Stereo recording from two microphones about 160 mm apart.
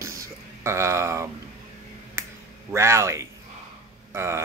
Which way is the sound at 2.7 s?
15° right (ahead or behind).